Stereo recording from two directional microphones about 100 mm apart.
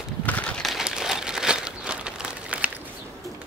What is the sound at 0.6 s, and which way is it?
Crumpling, 5° right (ahead or behind).